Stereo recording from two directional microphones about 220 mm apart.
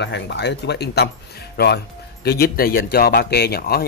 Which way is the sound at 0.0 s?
50° left (ahead or behind).